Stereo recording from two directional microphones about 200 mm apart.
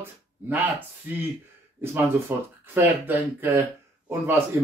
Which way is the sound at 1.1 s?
10° right (ahead or behind).